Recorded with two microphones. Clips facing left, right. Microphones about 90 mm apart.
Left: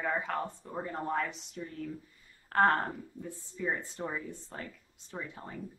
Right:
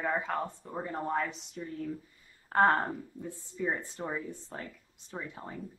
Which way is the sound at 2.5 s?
10° right (ahead or behind).